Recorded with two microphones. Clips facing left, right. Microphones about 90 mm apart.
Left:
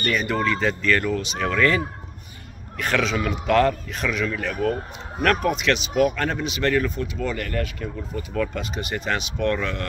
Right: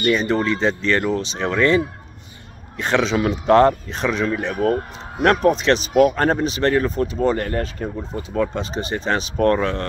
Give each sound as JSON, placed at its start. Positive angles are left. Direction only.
{"t": 0.1, "sound": "speech", "side_deg": -30}
{"t": 2.8, "sound": "speech", "side_deg": -30}